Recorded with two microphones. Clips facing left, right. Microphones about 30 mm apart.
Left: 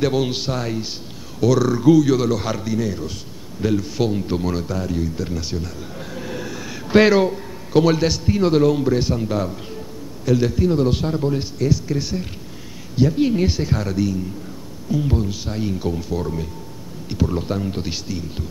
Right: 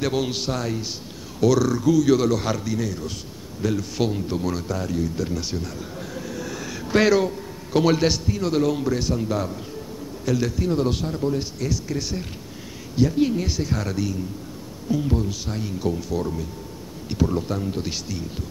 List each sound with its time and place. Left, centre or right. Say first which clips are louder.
0.0 s a man's voice: left 4 dB; centre
1.7 s a man's voice: left 5 dB; left
2.0 s a man's voice: even; centre
3.9 s a man's voice: left 3 dB; centre
4.3 s a man's voice: left 3 dB; centre
6.4 s a sound: left 1 dB; centre
6.9 s a man's voice: left 4 dB; left
7.7 s a man's voice: left 3 dB; centre
8.3 s a man's voice: left 6 dB; left
8.6 s a man's voice: left 5 dB; centre
9.8 s bird: even; centre
10.6 s a man's voice: left 4 dB; centre
11.5 s a man's voice: left 6 dB; centre
13.7 s a man's voice: left 4 dB; centre